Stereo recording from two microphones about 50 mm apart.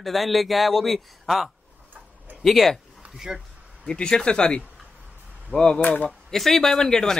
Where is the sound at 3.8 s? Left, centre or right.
Centre.